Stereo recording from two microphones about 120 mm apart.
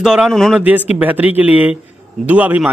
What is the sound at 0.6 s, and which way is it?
A man's voice, 15° right (ahead or behind).